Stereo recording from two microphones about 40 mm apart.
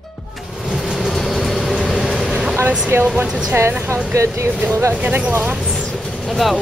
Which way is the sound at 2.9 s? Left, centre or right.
Right.